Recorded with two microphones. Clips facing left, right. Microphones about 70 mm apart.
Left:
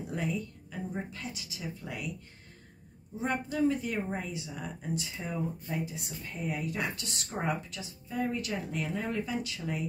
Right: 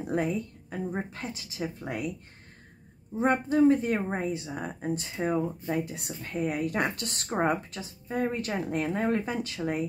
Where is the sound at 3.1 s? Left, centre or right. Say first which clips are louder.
Right 7 dB; right.